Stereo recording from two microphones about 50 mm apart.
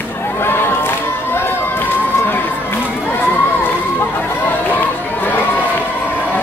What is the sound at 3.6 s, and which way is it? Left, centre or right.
Run, left.